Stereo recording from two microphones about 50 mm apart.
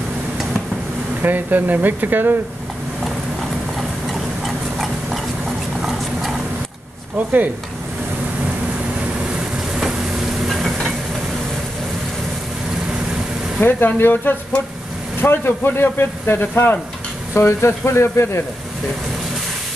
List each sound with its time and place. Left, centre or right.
1.2 s speech: right
4.1 s tick-tock: centre
5.8 s horse: centre
7.2 s speech: right
10.4 s stir: centre
13.6 s speech: left
17.3 s speech: left